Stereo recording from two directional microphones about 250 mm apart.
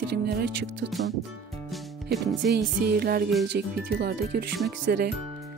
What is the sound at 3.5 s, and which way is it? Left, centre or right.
Speech, right.